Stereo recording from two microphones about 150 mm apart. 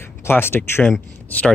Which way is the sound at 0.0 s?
15° left (ahead or behind).